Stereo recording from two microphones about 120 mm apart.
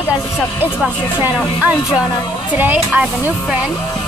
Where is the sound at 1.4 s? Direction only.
10° right (ahead or behind).